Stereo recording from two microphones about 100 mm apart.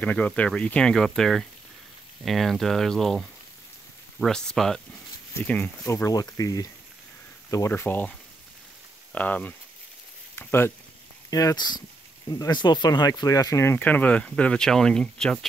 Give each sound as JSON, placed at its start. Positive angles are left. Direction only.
{"t": 0.0, "sound": "speech", "side_deg": 15}
{"t": 5.8, "sound": "speech", "side_deg": 30}
{"t": 7.5, "sound": "speech", "side_deg": 25}
{"t": 9.1, "sound": "speech", "side_deg": 15}
{"t": 10.3, "sound": "a sound", "side_deg": 25}
{"t": 11.2, "sound": "speech", "side_deg": 35}
{"t": 13.7, "sound": "speech", "side_deg": 15}